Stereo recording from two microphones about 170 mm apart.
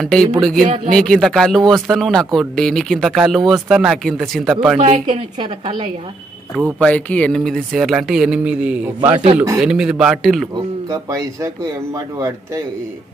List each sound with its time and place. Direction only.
0.0 s a man's voice: 5° left (ahead or behind)
4.7 s a woman's voice: 30° right (ahead or behind)
6.8 s a man's voice: 5° left (ahead or behind)
10.9 s a woman's voice: 20° right (ahead or behind)